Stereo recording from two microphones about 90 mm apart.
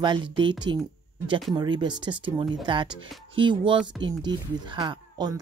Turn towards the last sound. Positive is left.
turn(degrees=-50)  # may be behind; listen again after turning